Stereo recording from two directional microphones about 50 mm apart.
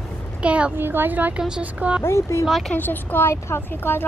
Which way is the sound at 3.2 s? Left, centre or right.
Left.